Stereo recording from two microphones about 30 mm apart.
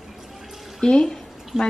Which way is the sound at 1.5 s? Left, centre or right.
Right.